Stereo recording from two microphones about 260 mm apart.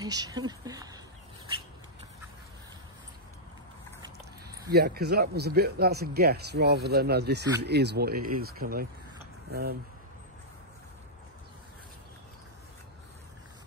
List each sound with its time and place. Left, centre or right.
0.0 s speech: centre
4.6 s speech: right